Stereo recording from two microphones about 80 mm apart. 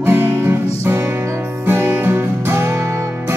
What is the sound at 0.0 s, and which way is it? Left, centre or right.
Music, right.